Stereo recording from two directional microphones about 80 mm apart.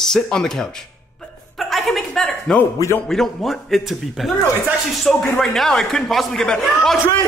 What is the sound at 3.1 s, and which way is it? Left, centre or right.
A man's voice, centre.